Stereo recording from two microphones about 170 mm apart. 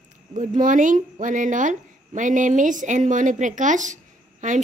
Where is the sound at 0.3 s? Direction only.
50° right (ahead or behind).